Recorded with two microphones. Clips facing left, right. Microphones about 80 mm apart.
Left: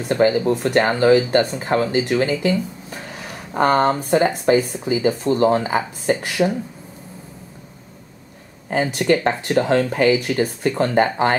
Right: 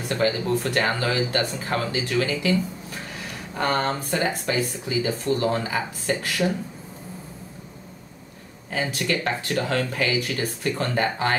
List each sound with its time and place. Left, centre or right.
0.1 s speech: left
5.7 s speech: left
6.2 s speech: centre
8.6 s speech: left